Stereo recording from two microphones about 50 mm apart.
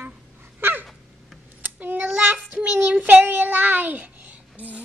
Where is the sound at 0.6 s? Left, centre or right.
Right.